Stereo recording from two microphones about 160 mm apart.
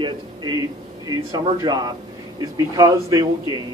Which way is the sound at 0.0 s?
25° right (ahead or behind).